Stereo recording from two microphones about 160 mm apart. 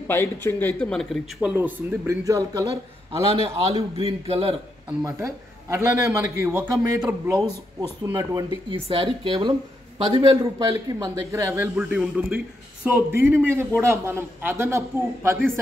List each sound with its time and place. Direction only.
0.1 s speech: 15° left (ahead or behind)
1.5 s a man's voice: 10° right (ahead or behind)
3.2 s a woman's voice: 40° right (ahead or behind)
5.0 s a man's voice: 15° right (ahead or behind)
8.6 s a woman's voice: 35° right (ahead or behind)
10.4 s a man's voice: 20° right (ahead or behind)